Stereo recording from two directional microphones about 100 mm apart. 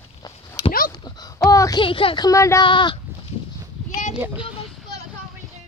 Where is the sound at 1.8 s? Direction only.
60° left (ahead or behind).